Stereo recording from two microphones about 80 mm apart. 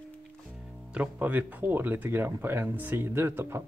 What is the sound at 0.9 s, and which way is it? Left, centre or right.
Speech, centre.